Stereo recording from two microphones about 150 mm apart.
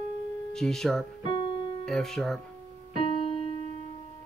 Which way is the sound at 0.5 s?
5° left (ahead or behind).